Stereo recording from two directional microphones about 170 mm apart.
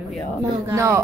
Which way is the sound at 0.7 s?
15° right (ahead or behind).